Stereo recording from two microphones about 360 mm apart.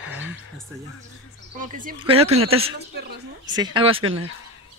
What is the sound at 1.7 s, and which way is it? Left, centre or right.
A woman's voice, right.